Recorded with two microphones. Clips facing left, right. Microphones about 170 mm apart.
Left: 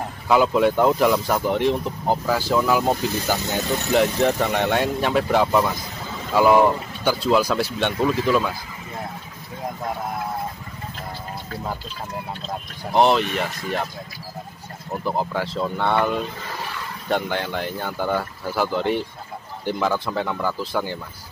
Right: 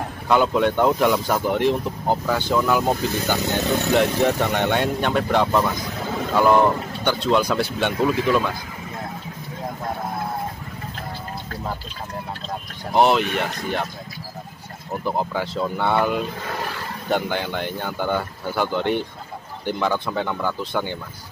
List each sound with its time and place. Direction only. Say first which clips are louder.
0.3 s speech: left 1 dB; centre (ahead or behind)
5.9 s vehicle: right 6 dB; 60° right (ahead or behind)
6.3 s speech: left 1 dB; 5° left (ahead or behind)
12.9 s speech: even; centre (ahead or behind)
15.0 s speech: even; centre (ahead or behind)